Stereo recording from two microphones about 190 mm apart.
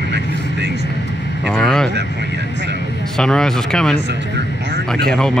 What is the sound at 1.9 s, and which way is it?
Speech, 65° right (ahead or behind).